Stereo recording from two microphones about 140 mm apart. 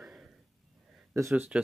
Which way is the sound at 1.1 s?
15° right (ahead or behind).